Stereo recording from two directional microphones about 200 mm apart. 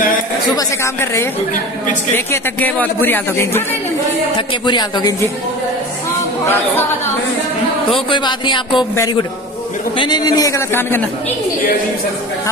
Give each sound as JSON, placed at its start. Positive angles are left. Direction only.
{"t": 2.1, "sound": "speech", "side_deg": 10}
{"t": 4.6, "sound": "speech", "side_deg": 20}
{"t": 7.9, "sound": "speech", "side_deg": 25}